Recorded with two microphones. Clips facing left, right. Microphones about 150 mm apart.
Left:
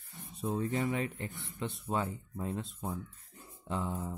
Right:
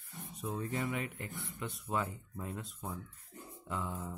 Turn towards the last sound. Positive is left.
turn(degrees=25)  # may be behind; listen again after turning